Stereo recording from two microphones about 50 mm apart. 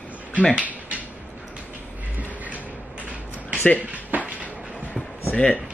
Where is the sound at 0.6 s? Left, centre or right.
Right.